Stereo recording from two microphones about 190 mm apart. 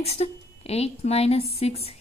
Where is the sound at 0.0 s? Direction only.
35° left (ahead or behind).